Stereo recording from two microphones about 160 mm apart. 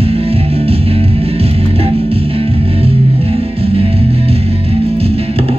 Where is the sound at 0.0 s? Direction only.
35° right (ahead or behind).